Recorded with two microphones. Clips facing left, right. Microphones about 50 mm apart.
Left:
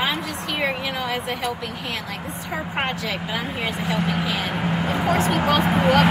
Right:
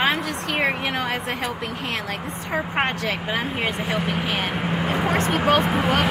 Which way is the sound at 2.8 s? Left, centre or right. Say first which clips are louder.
Even; right.